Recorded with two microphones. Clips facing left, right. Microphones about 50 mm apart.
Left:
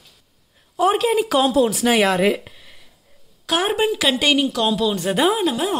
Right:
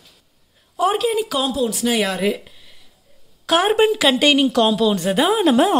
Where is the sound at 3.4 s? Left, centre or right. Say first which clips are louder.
Right 4 dB; centre.